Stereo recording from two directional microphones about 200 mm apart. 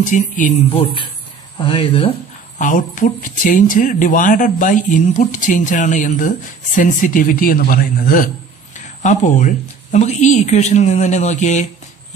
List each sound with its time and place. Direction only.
0.0 s speech: 40° left (ahead or behind)
2.6 s speech: 40° left (ahead or behind)